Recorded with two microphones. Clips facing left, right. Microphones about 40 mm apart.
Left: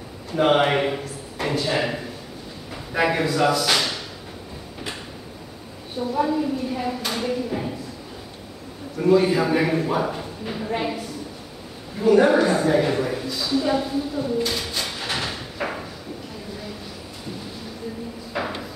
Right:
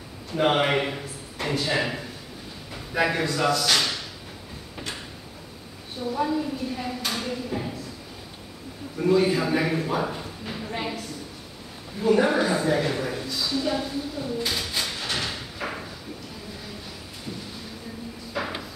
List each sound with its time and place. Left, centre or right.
0.3 s a man's voice: centre
6.1 s a man's voice: centre
8.9 s a man's voice: centre
12.2 s a man's voice: centre
14.4 s a sound: centre
18.3 s a sound: centre